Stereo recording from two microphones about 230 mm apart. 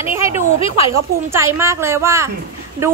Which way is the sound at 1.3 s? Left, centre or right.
Centre.